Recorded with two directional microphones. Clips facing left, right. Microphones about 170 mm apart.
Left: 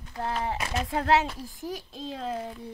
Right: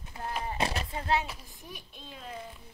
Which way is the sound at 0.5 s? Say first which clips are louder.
Left 1 dB; 30° right (ahead or behind).